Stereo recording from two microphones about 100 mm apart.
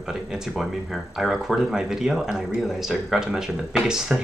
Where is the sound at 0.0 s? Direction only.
5° right (ahead or behind).